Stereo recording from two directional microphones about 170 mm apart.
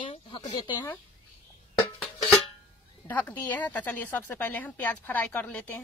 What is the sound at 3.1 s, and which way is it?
A woman's voice, 10° left (ahead or behind).